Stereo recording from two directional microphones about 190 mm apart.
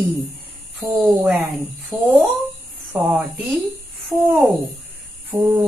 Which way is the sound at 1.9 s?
15° right (ahead or behind).